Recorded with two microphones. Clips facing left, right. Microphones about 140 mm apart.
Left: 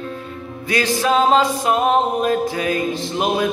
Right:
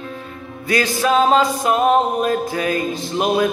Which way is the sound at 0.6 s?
40° right (ahead or behind).